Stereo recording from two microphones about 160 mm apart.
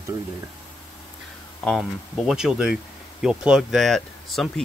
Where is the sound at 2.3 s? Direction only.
5° right (ahead or behind).